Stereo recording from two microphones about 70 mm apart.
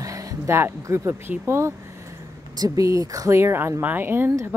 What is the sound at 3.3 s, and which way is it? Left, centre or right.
Speech, right.